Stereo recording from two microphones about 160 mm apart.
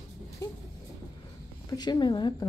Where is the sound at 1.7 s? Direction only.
25° left (ahead or behind).